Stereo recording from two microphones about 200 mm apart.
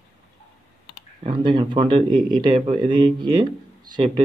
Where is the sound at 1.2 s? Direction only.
25° right (ahead or behind).